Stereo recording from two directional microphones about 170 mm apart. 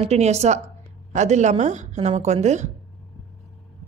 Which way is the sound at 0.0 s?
40° right (ahead or behind).